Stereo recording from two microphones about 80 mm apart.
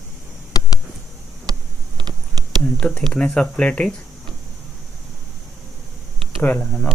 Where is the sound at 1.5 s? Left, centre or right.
Right.